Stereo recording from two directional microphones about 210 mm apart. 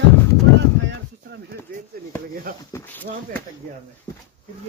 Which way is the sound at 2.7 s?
10° left (ahead or behind).